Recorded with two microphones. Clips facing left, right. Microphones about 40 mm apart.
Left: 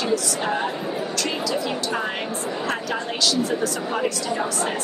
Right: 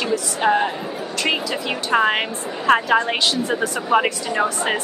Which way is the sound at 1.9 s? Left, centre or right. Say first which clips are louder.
Right 8 dB; right.